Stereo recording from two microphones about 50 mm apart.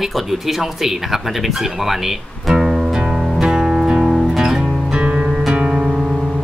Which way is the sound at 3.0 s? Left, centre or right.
Centre.